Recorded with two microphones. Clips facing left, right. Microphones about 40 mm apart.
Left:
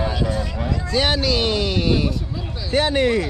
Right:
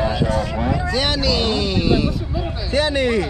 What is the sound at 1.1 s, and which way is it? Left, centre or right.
Speech, right.